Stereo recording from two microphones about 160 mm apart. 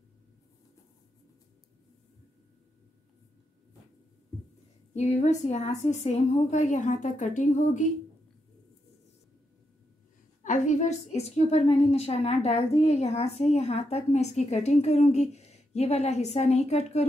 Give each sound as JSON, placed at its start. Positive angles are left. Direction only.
{"t": 4.9, "sound": "a woman's voice", "side_deg": 45}
{"t": 10.4, "sound": "a woman's voice", "side_deg": 50}